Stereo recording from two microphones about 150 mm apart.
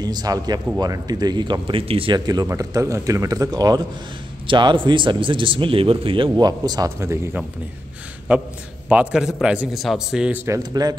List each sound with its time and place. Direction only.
0.0 s a man's voice: 25° right (ahead or behind)